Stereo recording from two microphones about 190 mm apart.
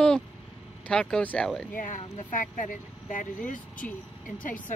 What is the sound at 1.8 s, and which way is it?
Speech, 45° left (ahead or behind).